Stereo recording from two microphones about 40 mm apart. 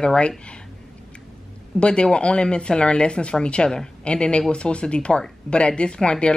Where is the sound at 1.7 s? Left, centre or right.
Left.